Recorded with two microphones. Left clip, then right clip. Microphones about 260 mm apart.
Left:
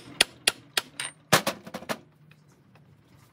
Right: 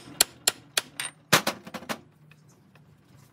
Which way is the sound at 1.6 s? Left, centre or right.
Centre.